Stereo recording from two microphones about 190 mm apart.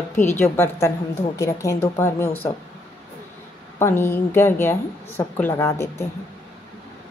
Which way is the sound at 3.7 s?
15° left (ahead or behind).